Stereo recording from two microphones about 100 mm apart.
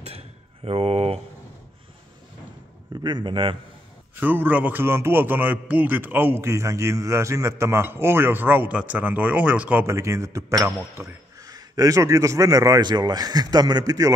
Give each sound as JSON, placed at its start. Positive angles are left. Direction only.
{"t": 0.7, "sound": "speech", "side_deg": -90}
{"t": 3.0, "sound": "a man's voice", "side_deg": -50}
{"t": 4.2, "sound": "a man's voice", "side_deg": -15}
{"t": 9.8, "sound": "a man's voice", "side_deg": -30}
{"t": 11.4, "sound": "a man's voice", "side_deg": -40}